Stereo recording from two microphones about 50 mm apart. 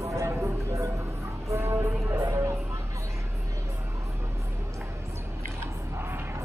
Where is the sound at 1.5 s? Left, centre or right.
Right.